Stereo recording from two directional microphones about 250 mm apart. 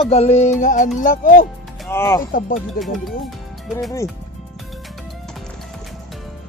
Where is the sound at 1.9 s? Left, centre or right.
Centre.